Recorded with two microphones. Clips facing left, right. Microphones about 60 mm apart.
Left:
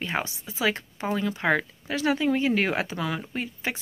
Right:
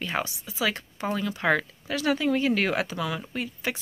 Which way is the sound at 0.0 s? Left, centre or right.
Left.